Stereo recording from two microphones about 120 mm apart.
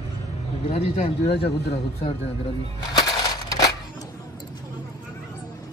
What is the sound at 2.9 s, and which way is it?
Crushing, 35° left (ahead or behind).